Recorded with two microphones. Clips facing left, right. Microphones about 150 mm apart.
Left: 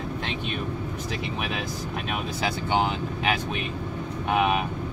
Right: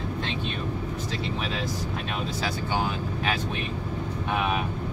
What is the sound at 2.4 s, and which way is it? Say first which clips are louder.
Speech: left 5 dB; 20° left (ahead or behind).